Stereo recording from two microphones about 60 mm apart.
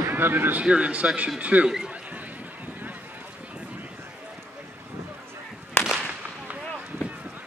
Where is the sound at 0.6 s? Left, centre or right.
Centre.